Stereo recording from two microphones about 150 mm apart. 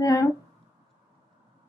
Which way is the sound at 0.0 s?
20° left (ahead or behind).